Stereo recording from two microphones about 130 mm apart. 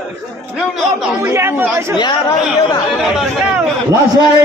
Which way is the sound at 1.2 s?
20° right (ahead or behind).